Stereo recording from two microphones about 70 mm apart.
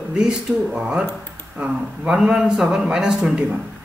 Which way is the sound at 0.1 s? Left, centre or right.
Centre.